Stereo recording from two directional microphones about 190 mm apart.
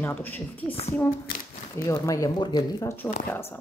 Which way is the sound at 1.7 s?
15° left (ahead or behind).